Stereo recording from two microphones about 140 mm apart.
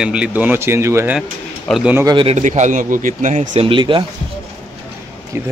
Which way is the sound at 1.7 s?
5° right (ahead or behind).